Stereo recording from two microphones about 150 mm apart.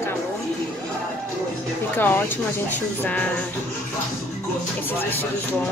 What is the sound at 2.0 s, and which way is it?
Speech, 15° left (ahead or behind).